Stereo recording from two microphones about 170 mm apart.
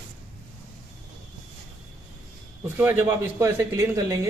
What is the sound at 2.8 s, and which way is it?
Speech, 10° right (ahead or behind).